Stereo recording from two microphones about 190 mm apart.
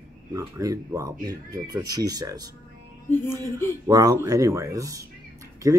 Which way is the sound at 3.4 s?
15° left (ahead or behind).